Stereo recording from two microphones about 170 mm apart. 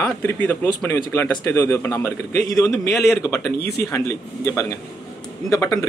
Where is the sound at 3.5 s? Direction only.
70° left (ahead or behind).